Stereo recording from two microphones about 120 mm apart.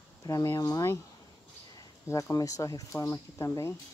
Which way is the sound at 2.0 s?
25° left (ahead or behind).